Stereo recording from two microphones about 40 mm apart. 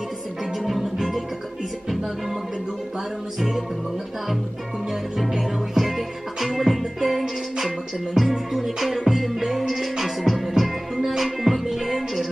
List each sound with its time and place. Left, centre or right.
0.5 s music: centre
3.3 s music: centre
5.1 s music: centre